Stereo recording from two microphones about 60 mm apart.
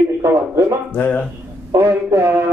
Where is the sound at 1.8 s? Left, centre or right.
Right.